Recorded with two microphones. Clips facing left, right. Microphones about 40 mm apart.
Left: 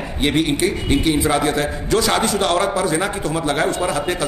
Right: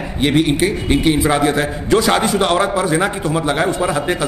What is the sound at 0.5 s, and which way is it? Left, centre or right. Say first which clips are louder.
A man's voice: right 2 dB; centre.